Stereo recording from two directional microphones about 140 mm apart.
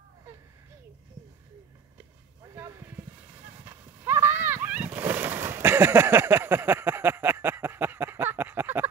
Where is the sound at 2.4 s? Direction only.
20° right (ahead or behind).